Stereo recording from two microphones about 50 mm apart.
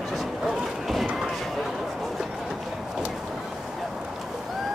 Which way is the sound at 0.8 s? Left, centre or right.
Centre.